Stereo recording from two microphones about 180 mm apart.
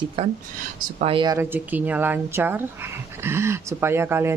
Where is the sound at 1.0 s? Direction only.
30° right (ahead or behind).